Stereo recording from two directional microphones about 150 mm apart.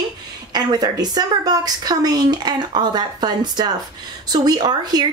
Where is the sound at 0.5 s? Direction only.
30° right (ahead or behind).